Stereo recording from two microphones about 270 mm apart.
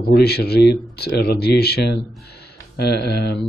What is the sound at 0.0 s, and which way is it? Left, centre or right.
Speech, left.